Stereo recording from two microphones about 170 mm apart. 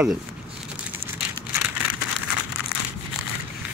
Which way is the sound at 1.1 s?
10° right (ahead or behind).